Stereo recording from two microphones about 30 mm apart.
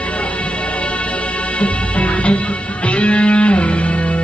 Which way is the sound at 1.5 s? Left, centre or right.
Left.